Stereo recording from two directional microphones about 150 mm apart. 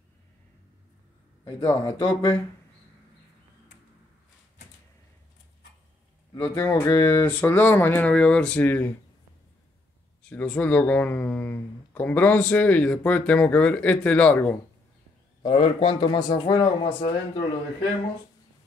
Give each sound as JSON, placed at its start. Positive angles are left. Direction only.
{"t": 1.4, "sound": "speech", "side_deg": 20}
{"t": 6.6, "sound": "speech", "side_deg": 20}
{"t": 10.3, "sound": "speech", "side_deg": 10}
{"t": 15.4, "sound": "speech", "side_deg": 35}